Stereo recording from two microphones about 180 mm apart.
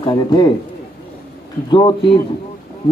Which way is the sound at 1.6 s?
25° left (ahead or behind).